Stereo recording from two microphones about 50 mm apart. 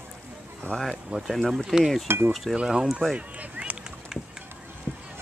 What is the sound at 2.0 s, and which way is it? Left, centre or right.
Speech, right.